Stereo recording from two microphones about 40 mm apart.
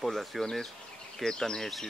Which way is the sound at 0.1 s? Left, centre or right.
Centre.